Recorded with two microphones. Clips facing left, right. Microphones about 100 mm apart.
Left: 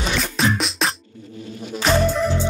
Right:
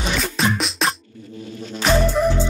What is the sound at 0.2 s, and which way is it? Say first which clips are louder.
Music: even; centre (ahead or behind).